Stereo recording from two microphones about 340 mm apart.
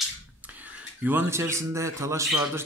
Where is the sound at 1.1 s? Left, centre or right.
Centre.